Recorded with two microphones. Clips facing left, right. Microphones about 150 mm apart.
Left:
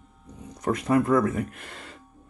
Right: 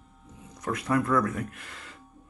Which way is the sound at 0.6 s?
25° left (ahead or behind).